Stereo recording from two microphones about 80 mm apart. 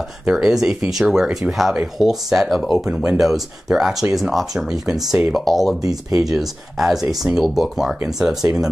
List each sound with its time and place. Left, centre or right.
0.2 s speech: centre
5.8 s speech: right
6.3 s speech: centre